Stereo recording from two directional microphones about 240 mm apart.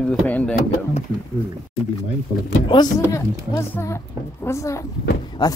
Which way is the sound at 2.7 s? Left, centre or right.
Centre.